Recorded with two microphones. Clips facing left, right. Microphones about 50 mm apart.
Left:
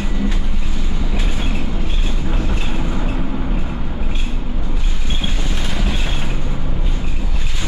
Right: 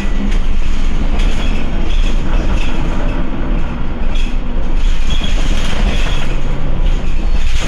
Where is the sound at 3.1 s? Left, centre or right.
Right.